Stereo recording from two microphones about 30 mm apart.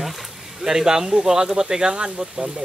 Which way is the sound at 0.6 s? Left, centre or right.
Centre.